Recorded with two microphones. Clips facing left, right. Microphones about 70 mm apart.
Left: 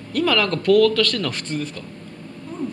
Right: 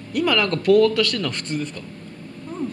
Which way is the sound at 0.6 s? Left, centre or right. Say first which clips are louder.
Even; centre.